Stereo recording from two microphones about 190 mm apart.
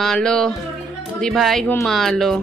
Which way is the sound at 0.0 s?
5° left (ahead or behind).